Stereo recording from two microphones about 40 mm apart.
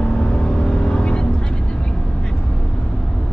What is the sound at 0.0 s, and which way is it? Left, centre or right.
Vehicle, left.